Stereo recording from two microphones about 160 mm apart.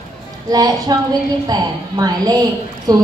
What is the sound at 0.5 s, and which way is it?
A woman's voice, 25° right (ahead or behind).